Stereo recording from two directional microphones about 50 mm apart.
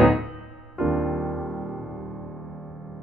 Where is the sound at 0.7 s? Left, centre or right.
Centre.